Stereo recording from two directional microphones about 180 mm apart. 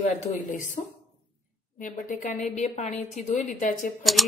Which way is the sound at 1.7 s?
45° left (ahead or behind).